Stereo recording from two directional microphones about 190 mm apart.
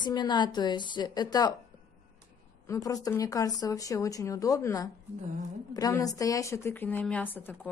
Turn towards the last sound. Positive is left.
turn(degrees=10)  # may be behind; listen again after turning